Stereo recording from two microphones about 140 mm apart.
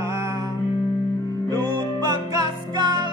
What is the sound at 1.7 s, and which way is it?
Music, 30° right (ahead or behind).